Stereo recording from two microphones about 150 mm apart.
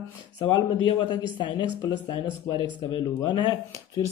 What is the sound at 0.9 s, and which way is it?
Speech, 30° left (ahead or behind).